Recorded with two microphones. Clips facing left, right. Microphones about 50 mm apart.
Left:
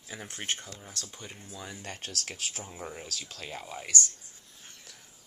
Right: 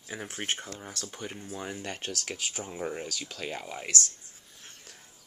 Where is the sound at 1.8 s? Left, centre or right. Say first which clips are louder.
Right 4 dB; right.